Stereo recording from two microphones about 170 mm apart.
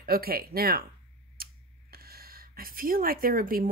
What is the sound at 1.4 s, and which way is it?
Tick-tock, 60° right (ahead or behind).